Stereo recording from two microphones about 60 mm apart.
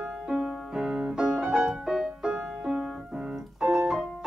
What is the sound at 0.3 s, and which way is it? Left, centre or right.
Music, centre.